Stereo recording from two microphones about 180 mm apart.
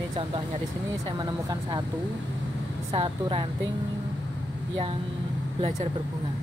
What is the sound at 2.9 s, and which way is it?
Speech, 30° right (ahead or behind).